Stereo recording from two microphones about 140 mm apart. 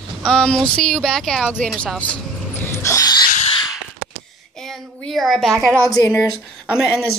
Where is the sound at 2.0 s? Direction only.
15° left (ahead or behind).